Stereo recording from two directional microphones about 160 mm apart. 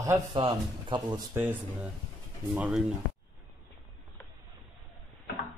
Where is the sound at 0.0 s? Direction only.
20° right (ahead or behind).